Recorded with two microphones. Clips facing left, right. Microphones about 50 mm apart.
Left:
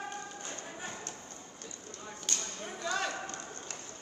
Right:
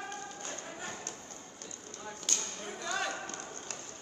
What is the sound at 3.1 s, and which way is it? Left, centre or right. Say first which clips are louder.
Clip-clop: left 1 dB; left.